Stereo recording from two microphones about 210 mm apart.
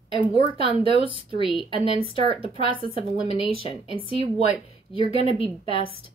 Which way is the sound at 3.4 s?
25° left (ahead or behind).